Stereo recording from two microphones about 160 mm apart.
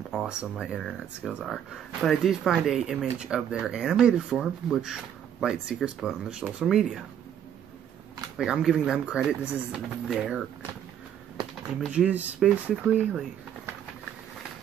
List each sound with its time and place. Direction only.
0.1 s speech: 5° right (ahead or behind)
8.4 s speech: 5° right (ahead or behind)
11.8 s speech: 5° right (ahead or behind)